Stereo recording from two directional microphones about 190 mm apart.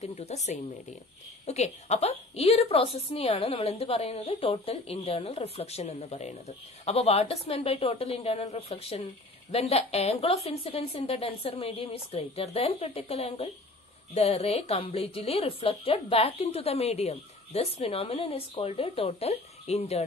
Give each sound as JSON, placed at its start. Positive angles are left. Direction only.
{"t": 0.0, "sound": "a woman's voice", "side_deg": 35}